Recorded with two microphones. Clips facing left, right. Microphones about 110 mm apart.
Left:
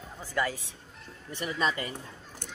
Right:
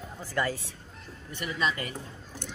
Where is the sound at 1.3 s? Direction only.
35° left (ahead or behind).